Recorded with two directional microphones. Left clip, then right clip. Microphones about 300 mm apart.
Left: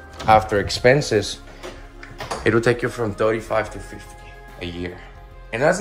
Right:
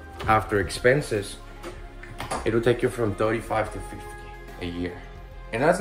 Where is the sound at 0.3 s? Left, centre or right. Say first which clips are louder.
Left 7 dB; centre.